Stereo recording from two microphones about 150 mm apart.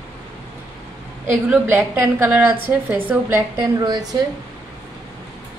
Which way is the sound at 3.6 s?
25° right (ahead or behind).